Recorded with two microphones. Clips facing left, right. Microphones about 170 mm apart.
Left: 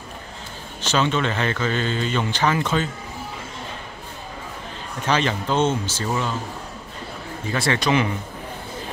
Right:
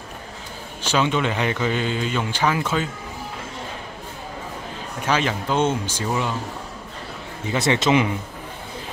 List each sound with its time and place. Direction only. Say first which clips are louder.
0.8 s speech: even; 10° right (ahead or behind)
5.0 s speech: even; 10° right (ahead or behind)
7.4 s a man's voice: right 2 dB; 20° right (ahead or behind)